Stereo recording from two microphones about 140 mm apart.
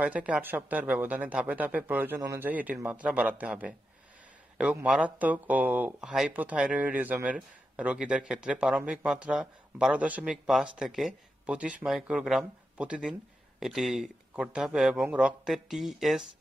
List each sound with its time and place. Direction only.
0.0 s speech: 10° right (ahead or behind)